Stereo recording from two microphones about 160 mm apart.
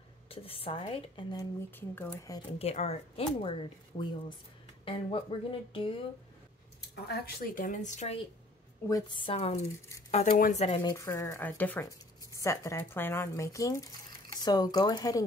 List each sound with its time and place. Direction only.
0.3 s speech: 35° left (ahead or behind)
1.8 s speech: 15° left (ahead or behind)
2.6 s speech: 40° left (ahead or behind)
7.1 s a woman's voice: 70° left (ahead or behind); by 8.2 s 45° left (ahead or behind)
8.8 s speech: 25° left (ahead or behind)
10.1 s speech: 50° left (ahead or behind)
11.1 s speech: 15° left (ahead or behind)